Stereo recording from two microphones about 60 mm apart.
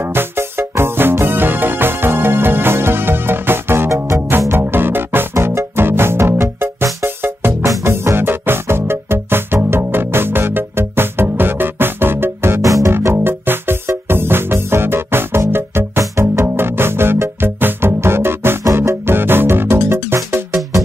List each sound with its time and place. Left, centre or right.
0.0 s music: right
5.3 s music: right
7.6 s music: right
12.6 s music: right
12.9 s music: right
16.4 s music: right